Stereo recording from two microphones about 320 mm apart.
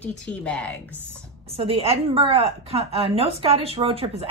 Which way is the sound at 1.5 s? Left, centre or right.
Centre.